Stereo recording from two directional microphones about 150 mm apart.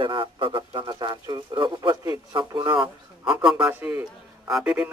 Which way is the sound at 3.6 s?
15° right (ahead or behind).